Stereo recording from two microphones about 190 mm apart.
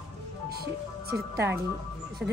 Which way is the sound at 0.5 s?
55° right (ahead or behind).